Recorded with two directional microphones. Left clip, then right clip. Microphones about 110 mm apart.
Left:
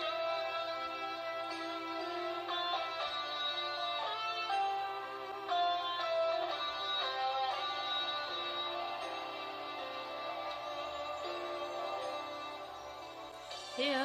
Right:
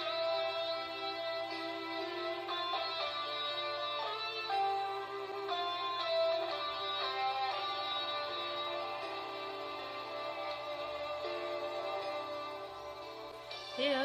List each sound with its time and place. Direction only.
0.0 s music: 30° left (ahead or behind)
2.2 s music: 30° left (ahead or behind)
13.7 s music: 35° left (ahead or behind)